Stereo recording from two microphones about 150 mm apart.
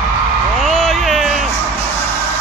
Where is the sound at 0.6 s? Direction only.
Centre (ahead or behind).